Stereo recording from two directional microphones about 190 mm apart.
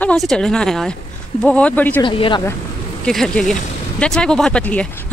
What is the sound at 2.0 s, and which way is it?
Speech, 25° left (ahead or behind).